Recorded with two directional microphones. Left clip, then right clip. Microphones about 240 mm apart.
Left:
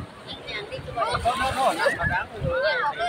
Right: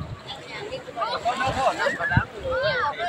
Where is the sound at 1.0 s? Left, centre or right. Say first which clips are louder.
Left 1 dB; left.